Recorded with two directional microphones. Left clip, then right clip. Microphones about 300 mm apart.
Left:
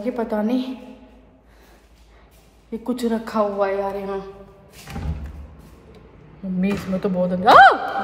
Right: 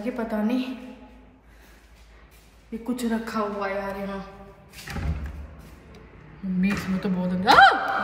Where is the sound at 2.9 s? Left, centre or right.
Centre.